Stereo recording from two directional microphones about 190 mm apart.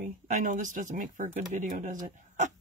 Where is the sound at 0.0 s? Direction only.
40° right (ahead or behind).